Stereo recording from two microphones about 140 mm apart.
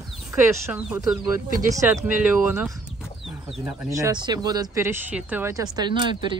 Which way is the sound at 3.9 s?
25° right (ahead or behind).